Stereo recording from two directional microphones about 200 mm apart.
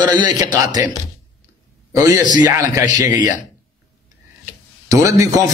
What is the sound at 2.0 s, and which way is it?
Speech, 20° right (ahead or behind).